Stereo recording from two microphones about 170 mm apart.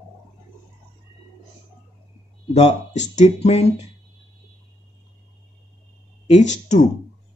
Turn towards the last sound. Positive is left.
turn(degrees=45)  # may be behind; listen again after turning